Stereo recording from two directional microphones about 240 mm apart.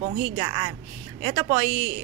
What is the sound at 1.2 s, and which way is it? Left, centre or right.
Speech, centre.